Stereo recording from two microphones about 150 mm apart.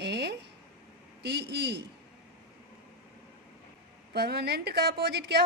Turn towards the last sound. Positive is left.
turn(degrees=-90)